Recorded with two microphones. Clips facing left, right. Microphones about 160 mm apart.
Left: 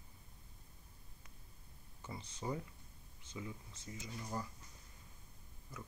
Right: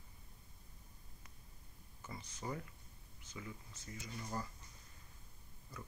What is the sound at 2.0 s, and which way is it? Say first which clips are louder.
Speech: left 2 dB; 20° left (ahead or behind).